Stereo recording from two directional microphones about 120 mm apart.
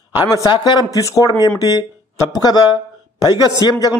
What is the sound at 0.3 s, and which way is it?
A man's voice, 35° left (ahead or behind).